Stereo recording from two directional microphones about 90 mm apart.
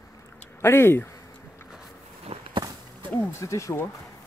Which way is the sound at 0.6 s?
25° left (ahead or behind).